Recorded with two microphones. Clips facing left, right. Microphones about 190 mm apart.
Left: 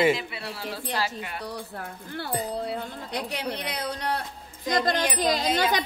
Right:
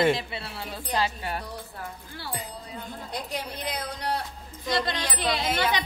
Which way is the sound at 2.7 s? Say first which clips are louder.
Left 5 dB; 70° left (ahead or behind).